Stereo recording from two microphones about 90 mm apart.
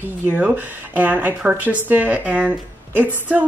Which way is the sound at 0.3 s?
20° right (ahead or behind).